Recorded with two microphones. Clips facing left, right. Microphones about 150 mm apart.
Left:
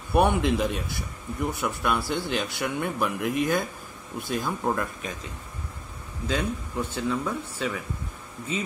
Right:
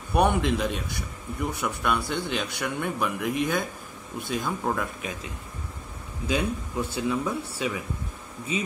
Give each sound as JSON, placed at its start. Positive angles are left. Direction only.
{"t": 0.1, "sound": "a man's voice", "side_deg": 0}
{"t": 6.2, "sound": "speech", "side_deg": -10}